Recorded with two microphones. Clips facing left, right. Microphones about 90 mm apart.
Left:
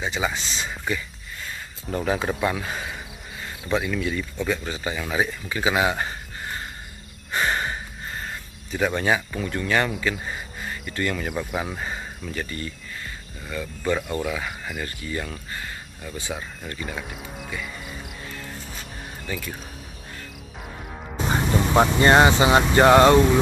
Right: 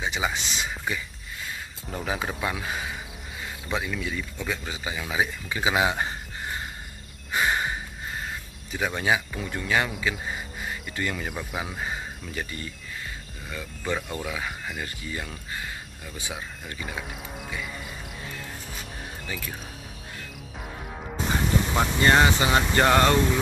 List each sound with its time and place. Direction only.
0.0 s speech: 15° right (ahead or behind)
5.5 s speech: 15° right (ahead or behind)
7.3 s a sound: 10° right (ahead or behind)
8.7 s speech: 5° right (ahead or behind)
21.3 s speech: 35° left (ahead or behind)